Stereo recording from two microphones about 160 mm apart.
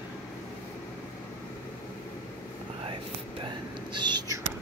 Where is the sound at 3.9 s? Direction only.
30° right (ahead or behind).